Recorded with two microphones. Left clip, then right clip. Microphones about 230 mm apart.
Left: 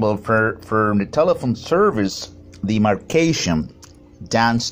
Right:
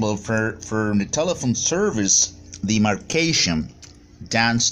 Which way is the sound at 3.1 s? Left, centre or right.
Centre.